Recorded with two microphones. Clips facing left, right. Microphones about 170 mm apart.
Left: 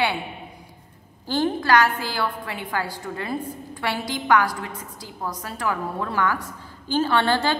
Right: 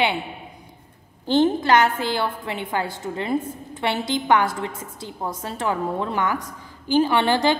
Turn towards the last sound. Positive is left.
turn(degrees=-15)  # may be behind; listen again after turning